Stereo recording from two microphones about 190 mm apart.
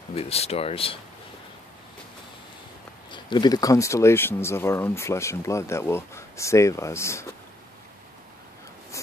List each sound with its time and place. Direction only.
0.1 s speech: 30° left (ahead or behind)
3.1 s speech: 25° left (ahead or behind)